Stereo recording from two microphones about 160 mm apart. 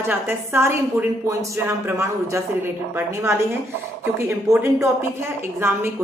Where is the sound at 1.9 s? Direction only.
15° right (ahead or behind).